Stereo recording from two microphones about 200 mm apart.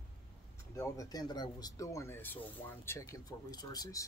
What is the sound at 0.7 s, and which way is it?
Speech, 20° left (ahead or behind).